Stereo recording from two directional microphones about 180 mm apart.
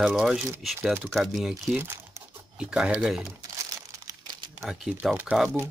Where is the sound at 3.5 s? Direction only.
20° right (ahead or behind).